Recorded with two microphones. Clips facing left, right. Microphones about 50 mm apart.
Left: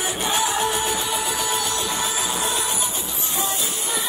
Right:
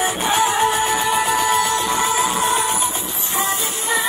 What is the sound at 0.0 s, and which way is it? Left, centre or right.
Music, right.